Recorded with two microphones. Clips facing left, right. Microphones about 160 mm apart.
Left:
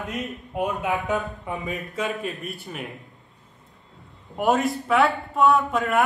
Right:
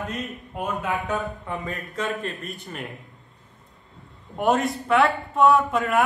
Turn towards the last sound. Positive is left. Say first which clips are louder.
# right 1 dB
turn(degrees=0)  # may be behind; listen again after turning